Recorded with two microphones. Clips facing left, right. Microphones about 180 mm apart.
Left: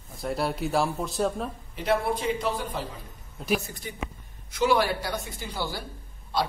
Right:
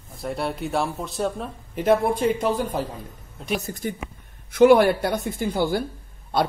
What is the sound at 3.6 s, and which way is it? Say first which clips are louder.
Speech: right 7 dB; 45° right (ahead or behind).